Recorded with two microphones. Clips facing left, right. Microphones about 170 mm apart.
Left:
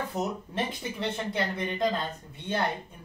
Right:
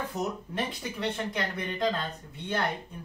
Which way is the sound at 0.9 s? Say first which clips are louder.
Left 1 dB; 20° left (ahead or behind).